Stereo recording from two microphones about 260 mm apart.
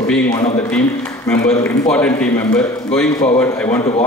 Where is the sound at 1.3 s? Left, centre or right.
Centre.